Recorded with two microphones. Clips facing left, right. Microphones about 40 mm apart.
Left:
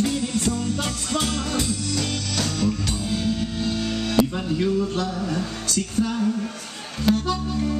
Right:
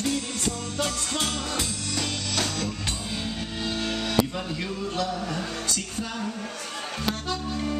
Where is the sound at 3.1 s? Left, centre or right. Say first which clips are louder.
Left 7 dB; right.